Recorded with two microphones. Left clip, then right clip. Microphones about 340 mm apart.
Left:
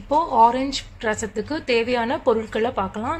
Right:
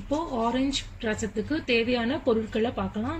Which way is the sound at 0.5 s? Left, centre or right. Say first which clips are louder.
Left 5 dB; centre.